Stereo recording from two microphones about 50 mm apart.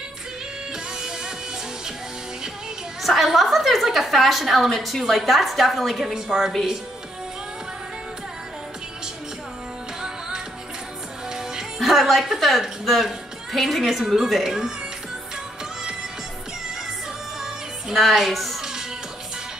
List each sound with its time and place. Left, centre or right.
3.0 s a woman's voice: centre
11.8 s a woman's voice: centre
17.4 s music: centre